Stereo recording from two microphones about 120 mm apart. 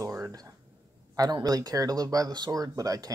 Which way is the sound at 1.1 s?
30° right (ahead or behind).